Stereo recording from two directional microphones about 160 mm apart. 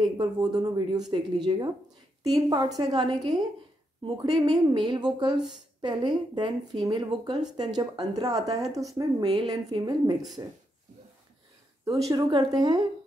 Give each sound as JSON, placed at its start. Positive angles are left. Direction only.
{"t": 0.0, "sound": "speech", "side_deg": -30}
{"t": 11.8, "sound": "speech", "side_deg": -20}